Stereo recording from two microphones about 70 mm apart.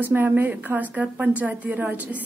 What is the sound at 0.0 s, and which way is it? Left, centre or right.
A woman's voice, right.